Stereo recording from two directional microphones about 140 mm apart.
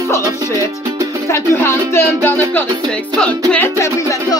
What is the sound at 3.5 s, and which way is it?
Music, 15° left (ahead or behind).